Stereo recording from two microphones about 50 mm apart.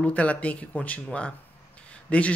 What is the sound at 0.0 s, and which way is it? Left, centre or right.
Speech, left.